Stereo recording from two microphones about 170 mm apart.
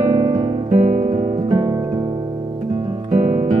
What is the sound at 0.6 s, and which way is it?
Music, 45° right (ahead or behind).